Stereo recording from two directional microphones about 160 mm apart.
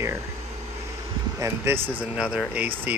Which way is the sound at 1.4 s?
15° right (ahead or behind).